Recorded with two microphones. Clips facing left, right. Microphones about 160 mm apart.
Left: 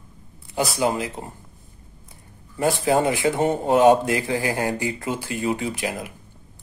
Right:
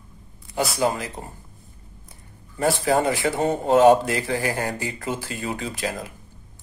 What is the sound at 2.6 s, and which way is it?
Speech, 20° left (ahead or behind).